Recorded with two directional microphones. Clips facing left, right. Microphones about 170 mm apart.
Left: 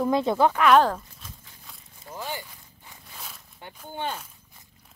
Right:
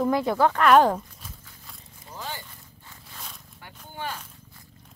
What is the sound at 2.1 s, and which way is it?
Zipper, 15° left (ahead or behind).